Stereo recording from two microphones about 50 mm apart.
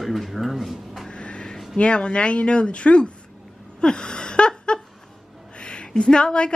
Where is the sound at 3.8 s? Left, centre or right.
Centre.